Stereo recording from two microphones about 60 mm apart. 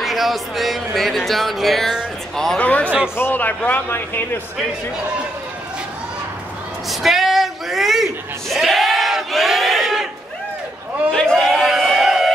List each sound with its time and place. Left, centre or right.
0.0 s speech: centre
2.6 s a man's voice: left
6.9 s a sound: centre
11.1 s speech: centre
11.4 s crowd: centre